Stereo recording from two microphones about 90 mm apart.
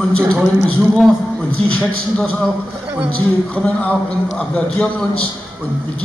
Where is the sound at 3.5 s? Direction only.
15° left (ahead or behind).